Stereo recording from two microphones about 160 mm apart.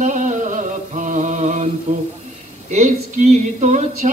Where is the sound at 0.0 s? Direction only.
50° right (ahead or behind).